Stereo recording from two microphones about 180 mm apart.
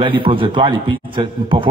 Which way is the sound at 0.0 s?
30° right (ahead or behind).